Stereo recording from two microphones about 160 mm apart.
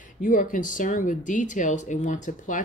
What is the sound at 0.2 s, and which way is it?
Speech, 55° left (ahead or behind).